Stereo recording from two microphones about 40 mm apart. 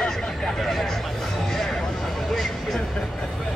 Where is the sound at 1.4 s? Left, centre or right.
Centre.